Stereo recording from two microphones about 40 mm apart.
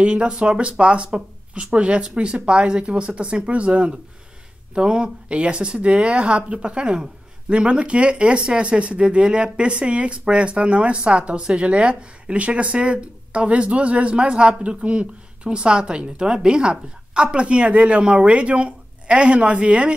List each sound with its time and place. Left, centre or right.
0.0 s speech: right